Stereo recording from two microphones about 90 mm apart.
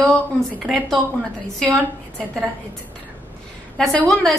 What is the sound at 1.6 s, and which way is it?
Speech, 5° left (ahead or behind).